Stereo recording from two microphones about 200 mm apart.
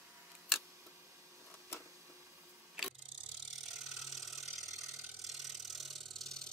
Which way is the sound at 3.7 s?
Centre (ahead or behind).